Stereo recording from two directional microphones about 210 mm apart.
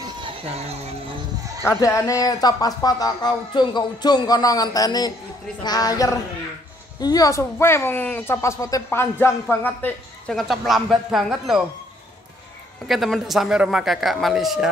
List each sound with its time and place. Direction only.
0.0 s music: 25° right (ahead or behind)
1.6 s speech: 10° left (ahead or behind)
12.8 s speech: centre (ahead or behind)